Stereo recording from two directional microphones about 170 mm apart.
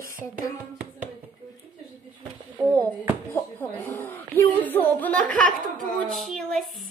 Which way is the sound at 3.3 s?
15° left (ahead or behind).